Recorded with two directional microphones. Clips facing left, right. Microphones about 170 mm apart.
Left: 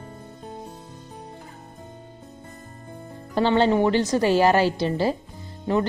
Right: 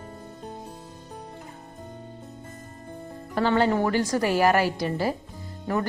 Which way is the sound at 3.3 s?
25° left (ahead or behind).